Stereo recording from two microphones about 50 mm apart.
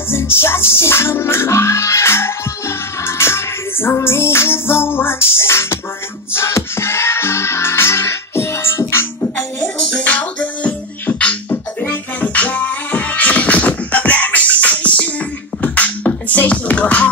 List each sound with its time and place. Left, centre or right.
0.1 s music: left
10.0 s music: left
11.4 s music: left